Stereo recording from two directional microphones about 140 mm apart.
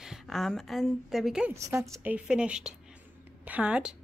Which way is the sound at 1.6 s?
20° right (ahead or behind).